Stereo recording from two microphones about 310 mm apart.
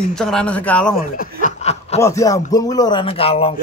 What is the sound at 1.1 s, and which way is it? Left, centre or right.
Snicker, left.